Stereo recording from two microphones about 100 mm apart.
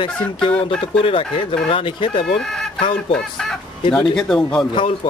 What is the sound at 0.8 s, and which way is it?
Speech, 65° left (ahead or behind).